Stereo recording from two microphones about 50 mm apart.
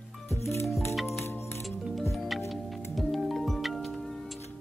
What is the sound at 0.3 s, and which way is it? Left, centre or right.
Music, left.